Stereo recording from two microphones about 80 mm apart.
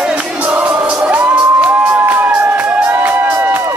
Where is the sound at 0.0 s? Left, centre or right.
Centre.